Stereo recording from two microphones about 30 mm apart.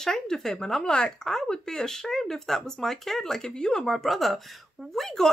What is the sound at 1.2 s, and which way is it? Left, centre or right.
Speech, centre.